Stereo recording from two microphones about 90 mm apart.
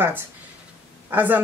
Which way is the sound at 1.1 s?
20° right (ahead or behind).